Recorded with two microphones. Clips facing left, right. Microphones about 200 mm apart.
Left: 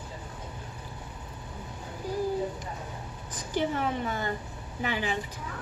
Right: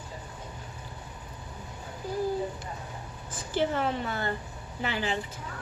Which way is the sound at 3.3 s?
15° left (ahead or behind).